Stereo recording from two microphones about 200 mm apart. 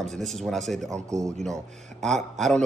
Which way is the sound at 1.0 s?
15° right (ahead or behind).